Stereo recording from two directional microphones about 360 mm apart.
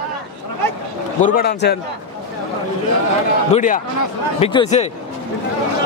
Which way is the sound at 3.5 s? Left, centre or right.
Left.